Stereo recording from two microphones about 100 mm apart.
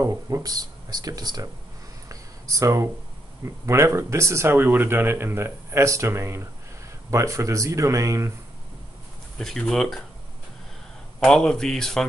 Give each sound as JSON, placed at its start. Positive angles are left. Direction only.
{"t": 0.0, "sound": "speech", "side_deg": -35}
{"t": 2.0, "sound": "a sound", "side_deg": -35}
{"t": 3.6, "sound": "speech", "side_deg": -30}
{"t": 9.4, "sound": "speech", "side_deg": 5}
{"t": 11.1, "sound": "speech", "side_deg": 5}